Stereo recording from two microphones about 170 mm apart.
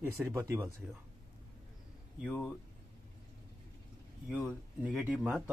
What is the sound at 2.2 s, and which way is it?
Speech, 5° left (ahead or behind).